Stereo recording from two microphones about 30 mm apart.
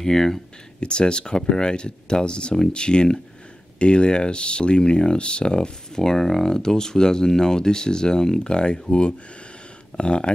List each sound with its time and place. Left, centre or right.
0.0 s speech: centre
0.7 s speech: left
6.0 s speech: centre; by 10.3 s left